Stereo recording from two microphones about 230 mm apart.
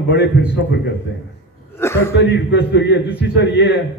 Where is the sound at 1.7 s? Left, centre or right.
Centre.